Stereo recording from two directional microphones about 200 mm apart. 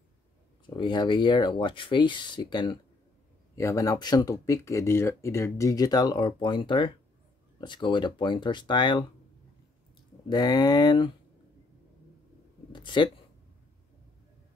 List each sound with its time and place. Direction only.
0.7 s speech: 25° left (ahead or behind)
10.3 s speech: 20° left (ahead or behind)
12.7 s speech: 25° left (ahead or behind)